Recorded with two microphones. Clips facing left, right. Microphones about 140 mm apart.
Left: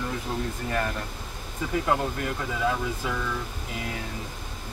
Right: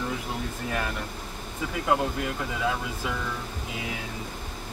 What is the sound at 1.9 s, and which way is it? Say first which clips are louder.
Speech: right 4 dB; 5° right (ahead or behind).